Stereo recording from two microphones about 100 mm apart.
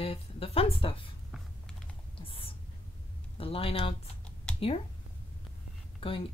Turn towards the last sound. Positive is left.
turn(degrees=65)  # may be behind; listen again after turning